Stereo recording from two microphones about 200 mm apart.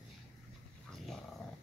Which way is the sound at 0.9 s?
Centre (ahead or behind).